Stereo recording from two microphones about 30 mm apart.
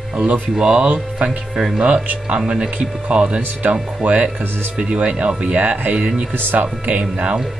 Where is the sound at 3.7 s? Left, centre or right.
Centre.